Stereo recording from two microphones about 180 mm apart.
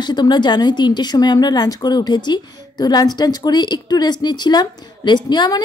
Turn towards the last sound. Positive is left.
turn(degrees=25)  # may be behind; listen again after turning